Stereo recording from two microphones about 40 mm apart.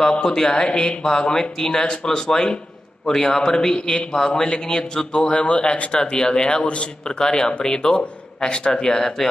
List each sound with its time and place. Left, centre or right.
0.2 s a man's voice: centre
8.8 s speech: centre